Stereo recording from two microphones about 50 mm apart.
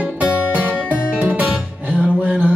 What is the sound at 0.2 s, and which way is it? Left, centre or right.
Music, right.